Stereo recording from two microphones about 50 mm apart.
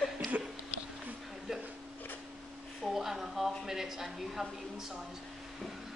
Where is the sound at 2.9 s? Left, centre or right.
Centre.